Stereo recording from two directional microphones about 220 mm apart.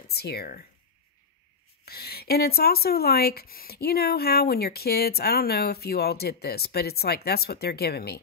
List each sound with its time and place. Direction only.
0.1 s speech: 45° left (ahead or behind)
1.9 s speech: 45° left (ahead or behind)